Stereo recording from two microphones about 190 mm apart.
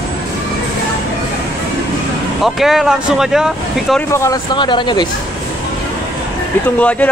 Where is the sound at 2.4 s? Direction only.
Centre (ahead or behind).